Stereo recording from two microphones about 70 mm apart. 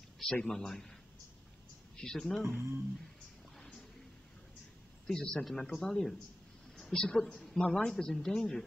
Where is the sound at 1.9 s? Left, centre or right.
Centre.